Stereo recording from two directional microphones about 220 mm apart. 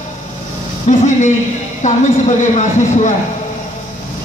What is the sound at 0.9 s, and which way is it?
A man's voice, 30° left (ahead or behind).